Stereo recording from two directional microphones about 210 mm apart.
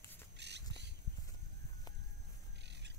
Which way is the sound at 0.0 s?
10° left (ahead or behind).